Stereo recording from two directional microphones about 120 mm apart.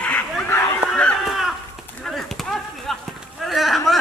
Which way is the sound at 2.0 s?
Centre (ahead or behind).